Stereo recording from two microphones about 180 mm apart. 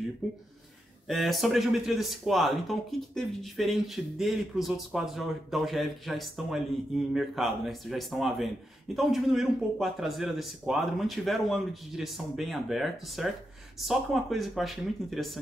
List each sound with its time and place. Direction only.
1.0 s speech: centre (ahead or behind)